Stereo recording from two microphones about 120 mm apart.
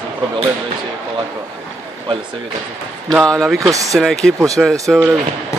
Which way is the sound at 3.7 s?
30° right (ahead or behind).